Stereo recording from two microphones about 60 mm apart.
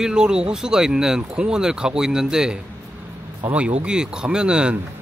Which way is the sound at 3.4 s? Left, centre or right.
Right.